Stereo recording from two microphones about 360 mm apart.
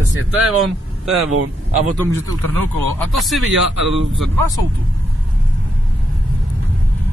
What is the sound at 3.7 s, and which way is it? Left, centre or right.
Speech, right.